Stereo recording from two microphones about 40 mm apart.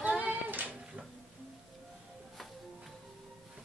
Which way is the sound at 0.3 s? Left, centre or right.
Right.